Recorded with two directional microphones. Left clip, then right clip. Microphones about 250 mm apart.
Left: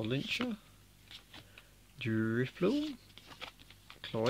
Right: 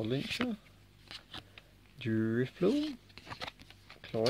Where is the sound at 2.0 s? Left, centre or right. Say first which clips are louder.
Right 1 dB; centre.